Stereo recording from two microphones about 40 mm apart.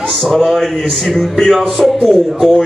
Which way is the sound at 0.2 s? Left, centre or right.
Centre.